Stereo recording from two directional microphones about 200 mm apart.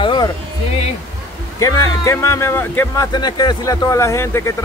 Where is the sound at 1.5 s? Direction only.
15° left (ahead or behind).